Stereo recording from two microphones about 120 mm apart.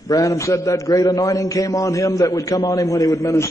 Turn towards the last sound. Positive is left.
turn(degrees=25)  # may be behind; listen again after turning